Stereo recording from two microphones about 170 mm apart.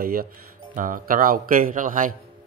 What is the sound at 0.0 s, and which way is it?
Speech, 60° right (ahead or behind).